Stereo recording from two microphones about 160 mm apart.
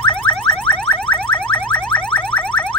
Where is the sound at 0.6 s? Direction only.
10° left (ahead or behind).